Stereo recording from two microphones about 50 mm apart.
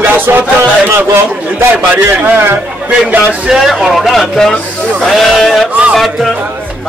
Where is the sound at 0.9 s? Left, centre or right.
Right.